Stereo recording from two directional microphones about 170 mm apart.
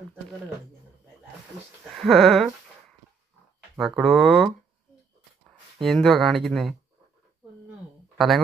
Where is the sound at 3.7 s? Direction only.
Centre (ahead or behind).